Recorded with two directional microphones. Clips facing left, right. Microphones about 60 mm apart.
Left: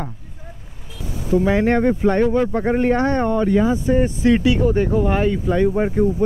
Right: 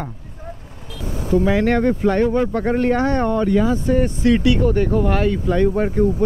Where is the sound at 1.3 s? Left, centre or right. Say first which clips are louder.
Even; centre.